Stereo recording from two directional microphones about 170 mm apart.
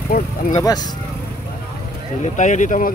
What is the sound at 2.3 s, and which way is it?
Speech, 45° left (ahead or behind).